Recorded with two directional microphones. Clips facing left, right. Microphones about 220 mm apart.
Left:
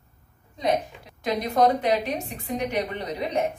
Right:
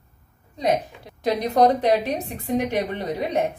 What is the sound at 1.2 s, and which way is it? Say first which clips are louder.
A woman's voice: right 3 dB; 40° right (ahead or behind).